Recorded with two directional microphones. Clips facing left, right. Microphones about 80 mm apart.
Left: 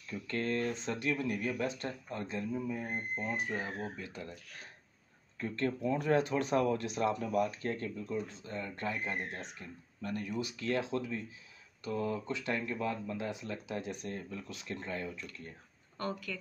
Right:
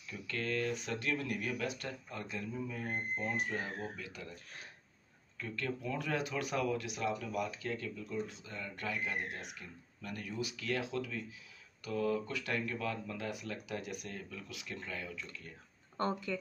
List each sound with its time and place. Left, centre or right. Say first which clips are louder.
0.3 s speech: left 2 dB; left
2.5 s speech: left 1 dB; centre
5.4 s speech: left 5 dB; left
16.0 s speech: right 3 dB; right